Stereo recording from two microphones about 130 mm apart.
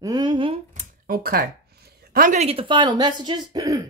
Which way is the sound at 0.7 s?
90° right.